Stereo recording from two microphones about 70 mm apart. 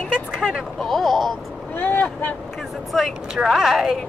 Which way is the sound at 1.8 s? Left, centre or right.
Left.